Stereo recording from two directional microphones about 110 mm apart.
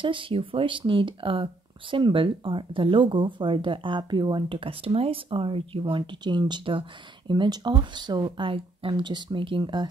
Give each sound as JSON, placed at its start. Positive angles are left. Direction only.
{"t": 0.0, "sound": "speech", "side_deg": -50}